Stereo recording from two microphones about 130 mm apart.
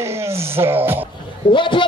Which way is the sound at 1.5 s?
40° left (ahead or behind).